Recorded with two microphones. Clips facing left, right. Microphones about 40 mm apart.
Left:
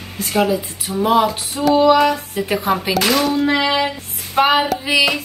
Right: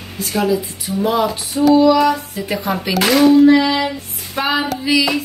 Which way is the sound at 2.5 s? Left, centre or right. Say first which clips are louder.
Left 2 dB; centre.